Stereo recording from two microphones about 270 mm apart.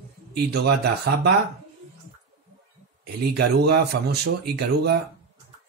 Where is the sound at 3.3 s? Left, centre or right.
Right.